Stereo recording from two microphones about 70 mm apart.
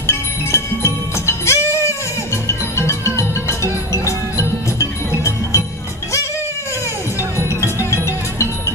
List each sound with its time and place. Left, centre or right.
0.0 s music: left
4.4 s music: left
7.6 s music: left